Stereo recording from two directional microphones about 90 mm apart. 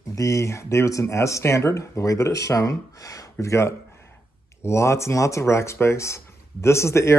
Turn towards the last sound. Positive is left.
turn(degrees=30)  # may be behind; listen again after turning